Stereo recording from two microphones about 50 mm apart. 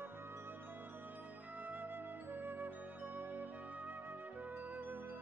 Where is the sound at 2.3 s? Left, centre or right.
Right.